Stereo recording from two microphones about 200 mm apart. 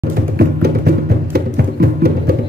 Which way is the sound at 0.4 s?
50° right (ahead or behind).